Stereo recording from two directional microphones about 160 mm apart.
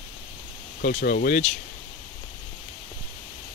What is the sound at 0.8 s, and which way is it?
Speech, 75° left (ahead or behind).